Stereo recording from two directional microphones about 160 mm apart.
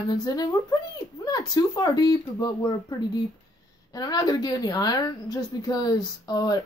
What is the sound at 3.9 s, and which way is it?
A woman's voice, 25° left (ahead or behind).